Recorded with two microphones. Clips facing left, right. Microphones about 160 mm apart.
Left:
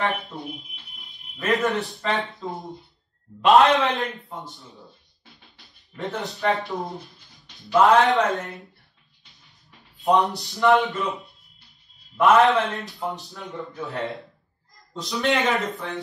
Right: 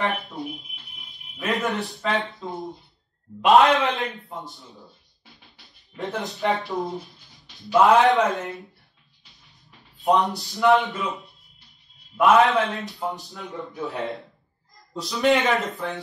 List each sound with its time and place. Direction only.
0.0 s a man's voice: centre (ahead or behind)
9.7 s a man's voice: centre (ahead or behind)